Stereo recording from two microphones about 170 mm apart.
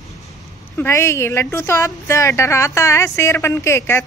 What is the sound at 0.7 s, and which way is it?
A woman's voice, 15° left (ahead or behind).